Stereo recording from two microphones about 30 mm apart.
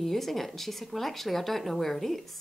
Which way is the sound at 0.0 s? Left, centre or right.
Centre.